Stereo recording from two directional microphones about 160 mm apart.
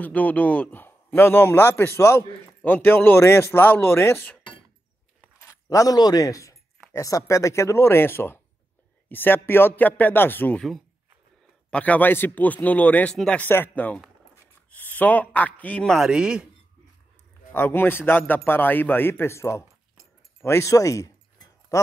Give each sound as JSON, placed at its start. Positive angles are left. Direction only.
{"t": 0.0, "sound": "a man's voice", "side_deg": 10}
{"t": 5.5, "sound": "a man's voice", "side_deg": 20}
{"t": 11.7, "sound": "a man's voice", "side_deg": 10}
{"t": 17.5, "sound": "a man's voice", "side_deg": 10}
{"t": 20.4, "sound": "a sound", "side_deg": 20}